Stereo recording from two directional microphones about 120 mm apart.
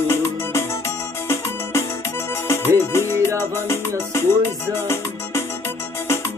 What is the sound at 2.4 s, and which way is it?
Music, 20° left (ahead or behind).